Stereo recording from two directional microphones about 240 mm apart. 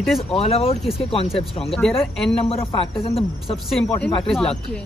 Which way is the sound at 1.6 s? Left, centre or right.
Centre.